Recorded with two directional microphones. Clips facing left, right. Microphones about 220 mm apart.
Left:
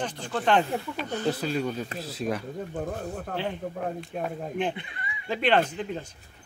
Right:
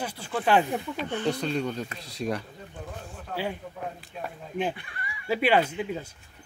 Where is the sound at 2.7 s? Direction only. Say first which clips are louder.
Left 8 dB; 50° left (ahead or behind).